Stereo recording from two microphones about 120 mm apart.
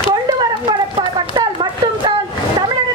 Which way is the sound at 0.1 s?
40° right (ahead or behind).